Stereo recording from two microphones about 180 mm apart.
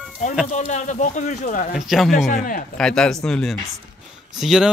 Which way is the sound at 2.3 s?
45° left (ahead or behind).